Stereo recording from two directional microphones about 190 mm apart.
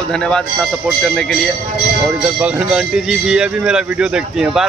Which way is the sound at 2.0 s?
5° right (ahead or behind).